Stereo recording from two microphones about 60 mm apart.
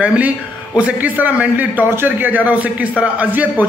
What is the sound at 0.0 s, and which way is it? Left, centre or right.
A man's voice, right.